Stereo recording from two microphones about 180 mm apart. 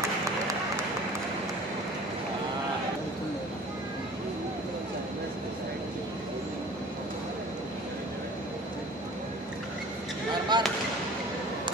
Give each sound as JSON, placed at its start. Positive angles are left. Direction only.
{"t": 10.5, "sound": "basketball bounce", "side_deg": -25}